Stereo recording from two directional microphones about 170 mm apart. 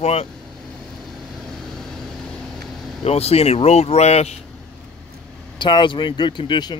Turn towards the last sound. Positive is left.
turn(degrees=25)  # may be behind; listen again after turning